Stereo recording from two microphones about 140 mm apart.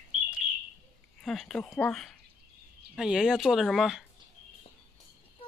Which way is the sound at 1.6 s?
20° left (ahead or behind).